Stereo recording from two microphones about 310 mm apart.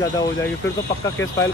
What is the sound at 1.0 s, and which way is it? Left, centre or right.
Speech, centre.